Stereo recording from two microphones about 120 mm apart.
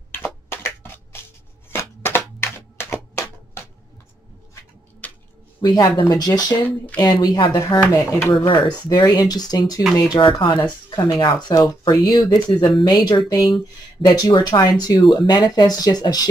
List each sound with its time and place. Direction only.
0.1 s a sound: 20° left (ahead or behind)
5.0 s a sound: 15° left (ahead or behind)
5.6 s speech: 40° left (ahead or behind)
7.5 s speech: 25° left (ahead or behind)
8.5 s speech: 40° left (ahead or behind)
10.1 s speech: 45° left (ahead or behind)
13.4 s speech: centre (ahead or behind)
14.0 s speech: 35° left (ahead or behind)